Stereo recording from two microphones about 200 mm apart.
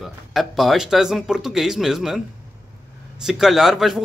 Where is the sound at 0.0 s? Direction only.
Centre (ahead or behind).